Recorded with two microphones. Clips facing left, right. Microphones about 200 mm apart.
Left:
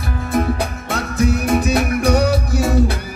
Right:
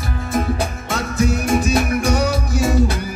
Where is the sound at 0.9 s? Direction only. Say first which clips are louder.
Left 1 dB; 60° left (ahead or behind).